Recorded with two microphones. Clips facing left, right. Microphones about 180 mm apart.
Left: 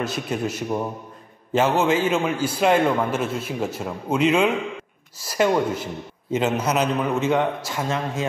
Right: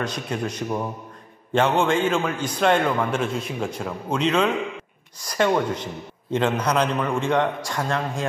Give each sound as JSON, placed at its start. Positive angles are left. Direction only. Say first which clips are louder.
{"t": 0.0, "sound": "a man's voice", "louder": "left 2 dB", "side_deg": 5}